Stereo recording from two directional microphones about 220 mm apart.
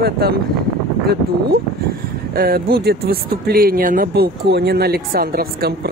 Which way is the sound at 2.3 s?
45° right (ahead or behind).